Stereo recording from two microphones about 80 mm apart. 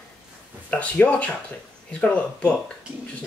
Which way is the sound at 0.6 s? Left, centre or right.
Centre.